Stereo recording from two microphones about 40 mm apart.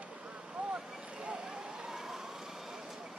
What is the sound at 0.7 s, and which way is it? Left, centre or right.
Vehicle, right.